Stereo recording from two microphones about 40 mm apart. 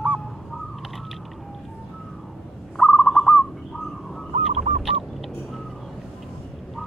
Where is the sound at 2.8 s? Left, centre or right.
Centre.